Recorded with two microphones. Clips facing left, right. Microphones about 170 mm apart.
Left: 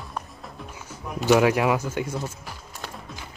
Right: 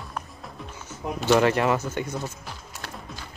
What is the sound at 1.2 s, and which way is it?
Speech, 10° left (ahead or behind).